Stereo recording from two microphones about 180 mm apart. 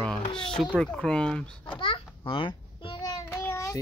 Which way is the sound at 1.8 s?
30° left (ahead or behind).